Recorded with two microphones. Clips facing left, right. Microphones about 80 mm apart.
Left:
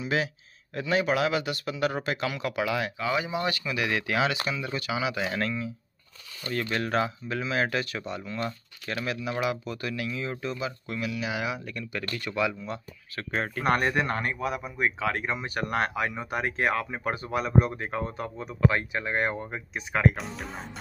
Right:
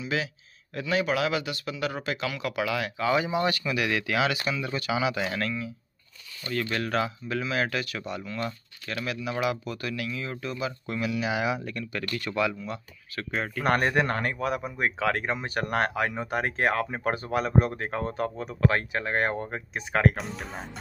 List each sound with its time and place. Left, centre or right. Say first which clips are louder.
0.0 s speech: left 2 dB; left
3.0 s speech: right 7 dB; centre
3.7 s speech: right 1 dB; centre
5.4 s speech: left 1 dB; left
10.9 s speech: right 4 dB; centre
12.2 s speech: right 1 dB; centre
12.6 s speech: even; left
13.7 s speech: right 1 dB; right
20.2 s speech: right 1 dB; centre